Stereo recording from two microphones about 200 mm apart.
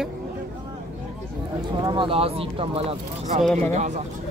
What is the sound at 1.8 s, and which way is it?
Speech, 25° right (ahead or behind).